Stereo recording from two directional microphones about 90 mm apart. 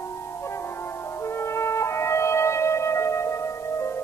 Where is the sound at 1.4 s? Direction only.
30° left (ahead or behind).